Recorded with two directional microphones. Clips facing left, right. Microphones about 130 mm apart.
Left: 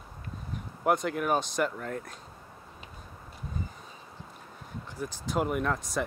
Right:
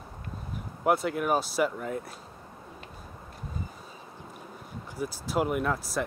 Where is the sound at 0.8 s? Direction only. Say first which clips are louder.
Right 1 dB; 5° right (ahead or behind).